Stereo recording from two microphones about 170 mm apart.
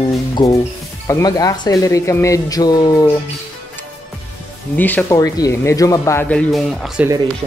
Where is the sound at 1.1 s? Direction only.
20° left (ahead or behind).